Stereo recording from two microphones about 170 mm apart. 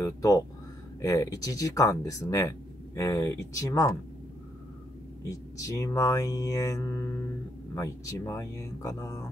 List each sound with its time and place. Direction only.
0.0 s speech: 20° left (ahead or behind)
5.3 s speech: 20° left (ahead or behind)